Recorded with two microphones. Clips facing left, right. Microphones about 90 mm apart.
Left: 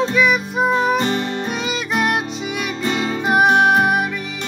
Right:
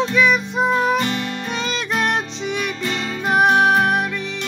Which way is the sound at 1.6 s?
10° left (ahead or behind).